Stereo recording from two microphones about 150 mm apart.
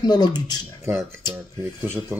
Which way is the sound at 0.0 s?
25° left (ahead or behind).